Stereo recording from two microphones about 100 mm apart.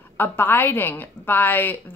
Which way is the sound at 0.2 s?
20° left (ahead or behind).